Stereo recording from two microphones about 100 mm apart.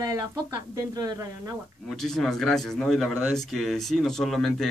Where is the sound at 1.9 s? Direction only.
5° left (ahead or behind).